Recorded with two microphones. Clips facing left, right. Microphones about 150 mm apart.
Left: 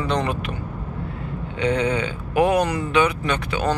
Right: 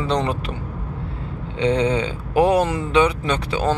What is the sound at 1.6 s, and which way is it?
Speech, 30° right (ahead or behind).